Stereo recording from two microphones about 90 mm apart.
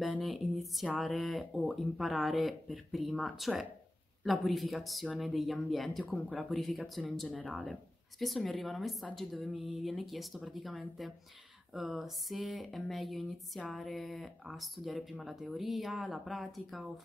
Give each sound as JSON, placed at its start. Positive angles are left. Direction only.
{"t": 0.2, "sound": "a sound", "side_deg": 0}
{"t": 1.7, "sound": "speech", "side_deg": 0}
{"t": 6.0, "sound": "speech", "side_deg": 15}
{"t": 6.3, "sound": "speech", "side_deg": 0}
{"t": 7.5, "sound": "music", "side_deg": -15}
{"t": 8.2, "sound": "speech", "side_deg": 0}
{"t": 9.5, "sound": "music", "side_deg": -10}
{"t": 9.8, "sound": "speech", "side_deg": 0}